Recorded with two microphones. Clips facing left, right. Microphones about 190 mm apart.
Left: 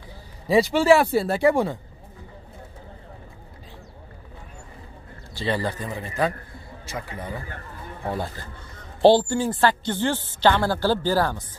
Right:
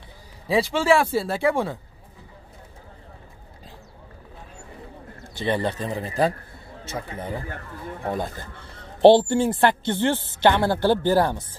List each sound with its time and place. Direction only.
0.5 s speech: centre (ahead or behind)
5.3 s speech: 20° right (ahead or behind)
5.9 s speech: 35° right (ahead or behind)
6.9 s speech: 25° right (ahead or behind)